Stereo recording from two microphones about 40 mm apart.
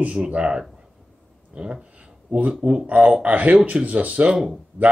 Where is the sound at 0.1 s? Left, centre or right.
Right.